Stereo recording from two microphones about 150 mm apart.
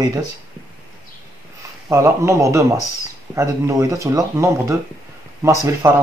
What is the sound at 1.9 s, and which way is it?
Speech, 20° right (ahead or behind).